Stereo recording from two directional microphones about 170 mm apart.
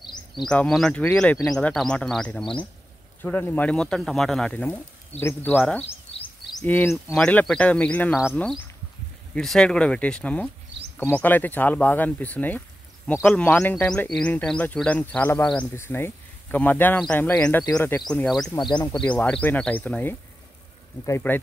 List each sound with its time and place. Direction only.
0.5 s speech: 5° left (ahead or behind)
7.2 s speech: 5° left (ahead or behind)
9.3 s speech: 5° left (ahead or behind)
18.6 s speech: 25° left (ahead or behind)
18.9 s speech: 5° left (ahead or behind)